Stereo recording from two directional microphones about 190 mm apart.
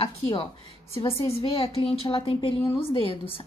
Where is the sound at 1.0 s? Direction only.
30° left (ahead or behind).